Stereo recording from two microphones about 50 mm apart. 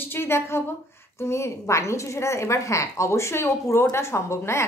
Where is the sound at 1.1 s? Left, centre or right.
Left.